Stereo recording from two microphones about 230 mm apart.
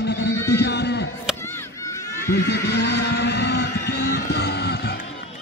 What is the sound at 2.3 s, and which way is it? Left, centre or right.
Vehicle, left.